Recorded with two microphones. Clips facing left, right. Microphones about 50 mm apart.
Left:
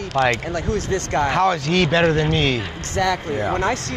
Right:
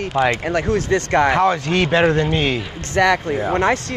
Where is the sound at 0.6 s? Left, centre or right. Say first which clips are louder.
Right 4 dB; right.